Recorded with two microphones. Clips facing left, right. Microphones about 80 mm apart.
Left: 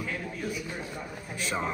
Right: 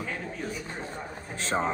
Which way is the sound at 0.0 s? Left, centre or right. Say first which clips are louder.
Even; right.